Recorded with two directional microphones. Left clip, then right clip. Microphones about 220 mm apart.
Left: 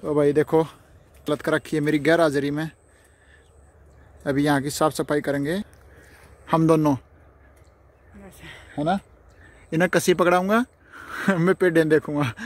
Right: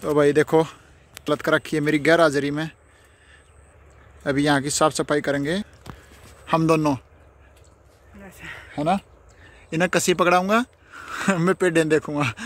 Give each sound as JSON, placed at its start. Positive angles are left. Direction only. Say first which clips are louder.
{"t": 0.0, "sound": "speech", "louder": "right 2 dB", "side_deg": 5}
{"t": 4.2, "sound": "speech", "louder": "right 1 dB", "side_deg": 5}
{"t": 6.4, "sound": "speech", "louder": "even", "side_deg": 25}
{"t": 8.2, "sound": "a sound", "louder": "right 5 dB", "side_deg": 0}
{"t": 8.7, "sound": "speech", "louder": "right 2 dB", "side_deg": 15}